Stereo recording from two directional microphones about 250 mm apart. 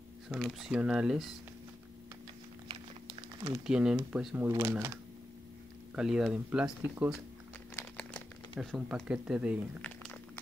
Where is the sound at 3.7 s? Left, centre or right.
Centre.